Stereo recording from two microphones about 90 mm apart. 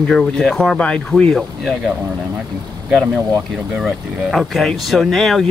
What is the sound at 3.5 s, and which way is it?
Speech, centre (ahead or behind).